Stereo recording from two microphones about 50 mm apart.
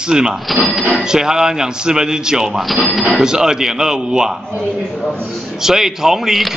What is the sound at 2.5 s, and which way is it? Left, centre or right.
Speech, centre.